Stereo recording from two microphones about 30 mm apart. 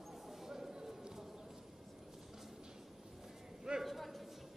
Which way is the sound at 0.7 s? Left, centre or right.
Right.